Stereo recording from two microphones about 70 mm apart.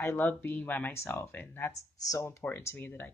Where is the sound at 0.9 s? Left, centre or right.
Left.